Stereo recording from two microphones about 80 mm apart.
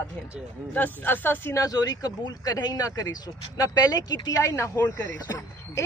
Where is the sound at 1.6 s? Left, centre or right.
Left.